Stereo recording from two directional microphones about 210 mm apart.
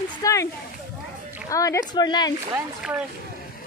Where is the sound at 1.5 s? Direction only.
15° left (ahead or behind).